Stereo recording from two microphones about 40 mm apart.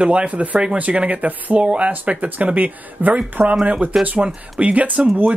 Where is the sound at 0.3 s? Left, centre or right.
Right.